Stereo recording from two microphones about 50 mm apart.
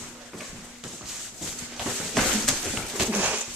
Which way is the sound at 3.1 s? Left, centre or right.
Right.